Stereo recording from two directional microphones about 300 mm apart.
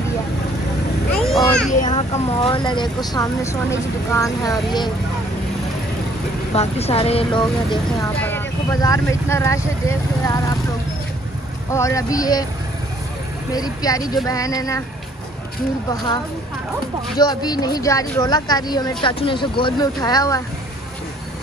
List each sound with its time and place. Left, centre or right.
1.2 s a sound: centre
1.7 s speech: left
6.5 s speech: left
11.7 s speech: centre
13.5 s speech: centre
17.2 s speech: centre